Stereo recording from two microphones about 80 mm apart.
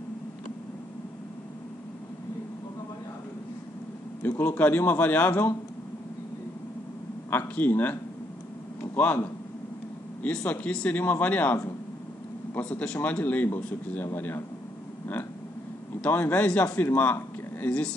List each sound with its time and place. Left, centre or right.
4.2 s speech: left
7.2 s a man's voice: left
10.2 s speech: centre
16.0 s speech: left